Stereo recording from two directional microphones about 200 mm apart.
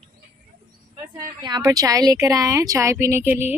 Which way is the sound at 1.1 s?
20° right (ahead or behind).